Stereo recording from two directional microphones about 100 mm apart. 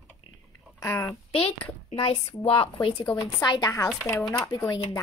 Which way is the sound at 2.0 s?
70° left (ahead or behind).